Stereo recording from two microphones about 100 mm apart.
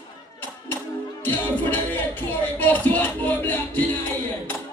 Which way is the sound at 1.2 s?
20° left (ahead or behind).